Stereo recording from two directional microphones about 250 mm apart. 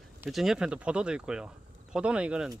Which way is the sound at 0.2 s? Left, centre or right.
Centre.